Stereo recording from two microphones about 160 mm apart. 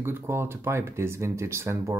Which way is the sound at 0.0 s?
15° right (ahead or behind).